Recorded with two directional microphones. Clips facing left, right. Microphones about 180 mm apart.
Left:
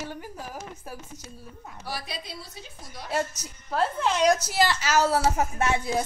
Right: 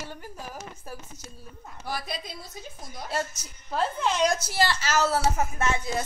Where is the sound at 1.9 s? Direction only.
50° right (ahead or behind).